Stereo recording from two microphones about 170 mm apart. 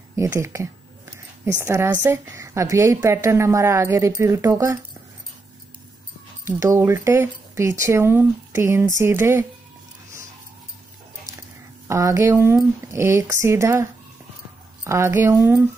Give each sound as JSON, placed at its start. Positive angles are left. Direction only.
{"t": 0.1, "sound": "a woman's voice", "side_deg": -15}
{"t": 6.6, "sound": "a woman's voice", "side_deg": -15}
{"t": 11.9, "sound": "a woman's voice", "side_deg": -15}
{"t": 14.9, "sound": "a woman's voice", "side_deg": -15}